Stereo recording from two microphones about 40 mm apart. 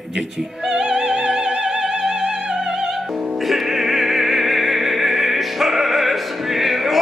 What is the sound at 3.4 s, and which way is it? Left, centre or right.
Opera, centre.